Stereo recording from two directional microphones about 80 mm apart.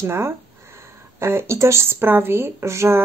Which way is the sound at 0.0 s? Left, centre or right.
Right.